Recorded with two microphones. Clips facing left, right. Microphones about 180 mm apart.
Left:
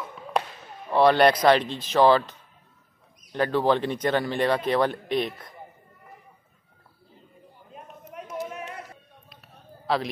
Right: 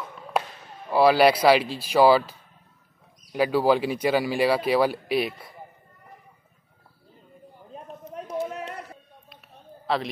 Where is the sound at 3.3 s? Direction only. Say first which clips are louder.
Right 2 dB; 10° right (ahead or behind).